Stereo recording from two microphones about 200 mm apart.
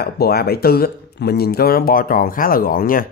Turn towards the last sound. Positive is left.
turn(degrees=45)  # may be behind; listen again after turning